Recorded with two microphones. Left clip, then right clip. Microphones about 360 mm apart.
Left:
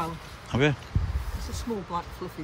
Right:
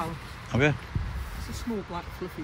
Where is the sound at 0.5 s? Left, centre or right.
Centre.